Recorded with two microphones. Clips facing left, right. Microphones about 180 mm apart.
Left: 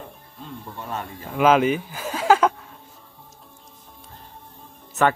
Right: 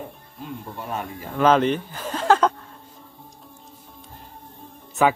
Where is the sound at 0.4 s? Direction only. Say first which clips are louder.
Right 2 dB; 10° right (ahead or behind).